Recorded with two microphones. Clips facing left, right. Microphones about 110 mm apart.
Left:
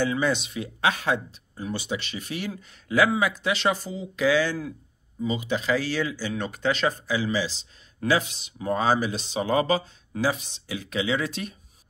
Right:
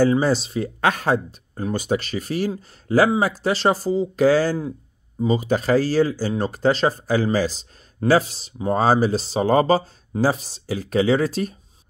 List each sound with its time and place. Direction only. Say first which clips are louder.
0.0 s speech: right 7 dB; 35° right (ahead or behind)